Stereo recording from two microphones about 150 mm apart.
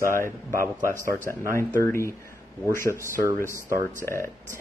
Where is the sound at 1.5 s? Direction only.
20° left (ahead or behind).